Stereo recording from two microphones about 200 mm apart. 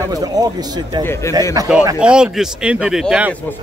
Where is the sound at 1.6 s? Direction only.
20° right (ahead or behind).